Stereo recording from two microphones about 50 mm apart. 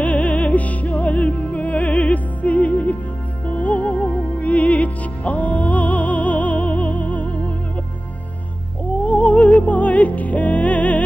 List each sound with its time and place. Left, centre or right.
0.0 s music: left
9.0 s music: left